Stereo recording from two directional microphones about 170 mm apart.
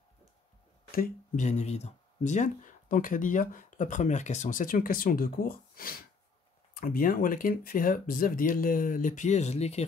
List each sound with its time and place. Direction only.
0.9 s speech: 55° left (ahead or behind)